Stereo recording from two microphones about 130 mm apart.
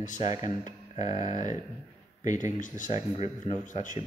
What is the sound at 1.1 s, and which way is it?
Speech, 65° left (ahead or behind).